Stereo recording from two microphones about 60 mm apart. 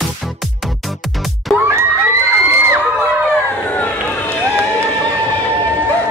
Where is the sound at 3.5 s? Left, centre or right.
Left.